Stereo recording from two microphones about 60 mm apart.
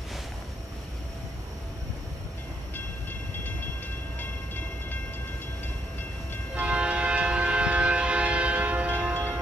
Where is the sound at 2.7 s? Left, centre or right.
Left.